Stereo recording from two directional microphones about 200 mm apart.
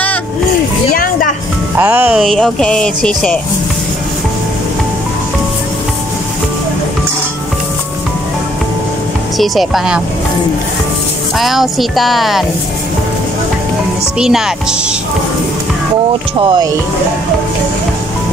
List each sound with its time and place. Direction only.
0.9 s music: 45° left (ahead or behind)
1.8 s speech: 10° right (ahead or behind)
9.4 s speech: centre (ahead or behind)
11.3 s speech: centre (ahead or behind)
14.1 s speech: 5° right (ahead or behind)
16.3 s speech: 25° right (ahead or behind)